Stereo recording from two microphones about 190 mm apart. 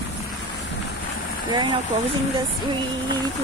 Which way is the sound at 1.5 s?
25° right (ahead or behind).